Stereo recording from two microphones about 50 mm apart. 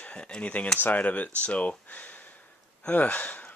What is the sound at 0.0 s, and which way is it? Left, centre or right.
Speech, left.